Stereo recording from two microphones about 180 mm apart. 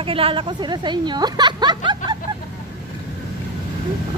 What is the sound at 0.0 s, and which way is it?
Speech, 30° right (ahead or behind).